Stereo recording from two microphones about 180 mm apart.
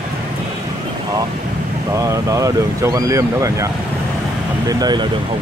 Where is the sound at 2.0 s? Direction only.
20° right (ahead or behind).